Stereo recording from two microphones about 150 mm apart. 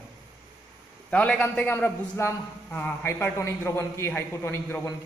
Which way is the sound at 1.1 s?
10° left (ahead or behind).